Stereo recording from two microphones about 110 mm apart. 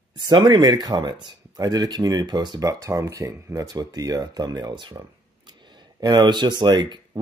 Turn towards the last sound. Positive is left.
turn(degrees=-40)  # may be behind; listen again after turning